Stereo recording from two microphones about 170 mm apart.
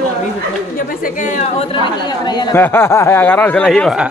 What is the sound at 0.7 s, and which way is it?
A woman's voice, 55° left (ahead or behind).